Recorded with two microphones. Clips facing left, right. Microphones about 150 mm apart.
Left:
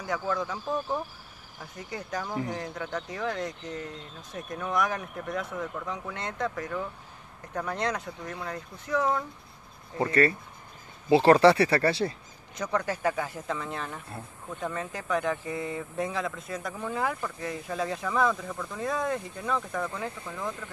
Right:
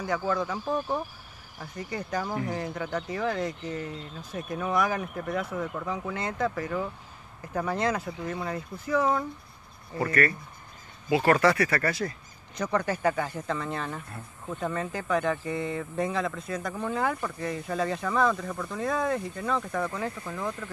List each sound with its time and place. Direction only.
0.0 s speech: centre (ahead or behind)
11.1 s speech: 30° left (ahead or behind)
12.5 s speech: centre (ahead or behind)